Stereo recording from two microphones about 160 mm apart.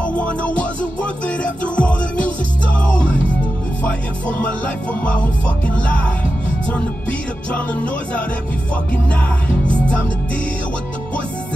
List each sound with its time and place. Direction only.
0.0 s music: 10° left (ahead or behind)
5.0 s music: 10° left (ahead or behind)
6.7 s music: 10° left (ahead or behind)